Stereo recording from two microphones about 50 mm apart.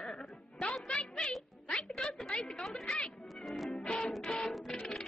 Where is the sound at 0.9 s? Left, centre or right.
Centre.